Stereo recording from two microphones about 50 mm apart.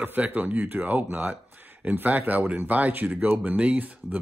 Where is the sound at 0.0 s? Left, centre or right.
Right.